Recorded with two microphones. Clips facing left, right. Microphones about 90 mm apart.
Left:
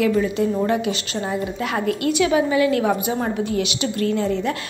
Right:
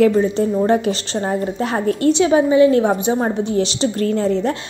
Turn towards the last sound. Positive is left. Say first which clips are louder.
# right 3 dB
turn(degrees=-35)  # may be behind; listen again after turning